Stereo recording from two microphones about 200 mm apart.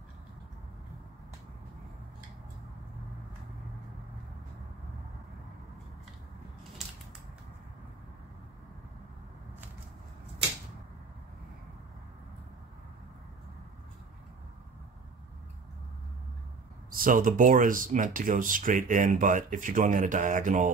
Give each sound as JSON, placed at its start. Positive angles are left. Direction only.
{"t": 17.0, "sound": "speech", "side_deg": -45}